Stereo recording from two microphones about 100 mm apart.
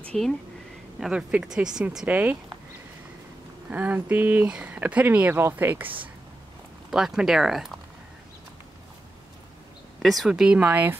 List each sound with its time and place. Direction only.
0.0 s speech: 10° left (ahead or behind)
0.9 s speech: 5° right (ahead or behind)
3.7 s speech: 15° right (ahead or behind)
6.9 s speech: 5° right (ahead or behind)
10.0 s speech: 5° right (ahead or behind)